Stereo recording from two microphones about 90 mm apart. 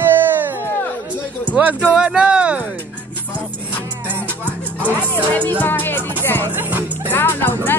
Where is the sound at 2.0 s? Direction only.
10° right (ahead or behind).